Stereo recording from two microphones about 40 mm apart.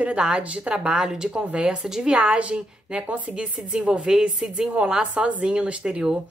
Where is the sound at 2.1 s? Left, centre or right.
Right.